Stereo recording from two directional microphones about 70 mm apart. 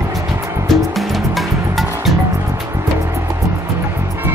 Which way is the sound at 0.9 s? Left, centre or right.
Centre.